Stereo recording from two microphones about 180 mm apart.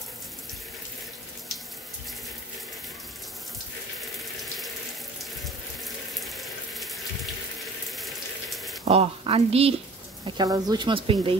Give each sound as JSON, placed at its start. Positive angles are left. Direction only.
{"t": 6.2, "sound": "water", "side_deg": 0}
{"t": 7.9, "sound": "raindrop", "side_deg": 0}
{"t": 8.8, "sound": "a woman's voice", "side_deg": -35}